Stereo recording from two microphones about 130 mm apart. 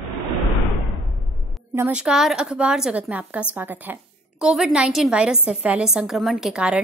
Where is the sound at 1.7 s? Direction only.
15° right (ahead or behind).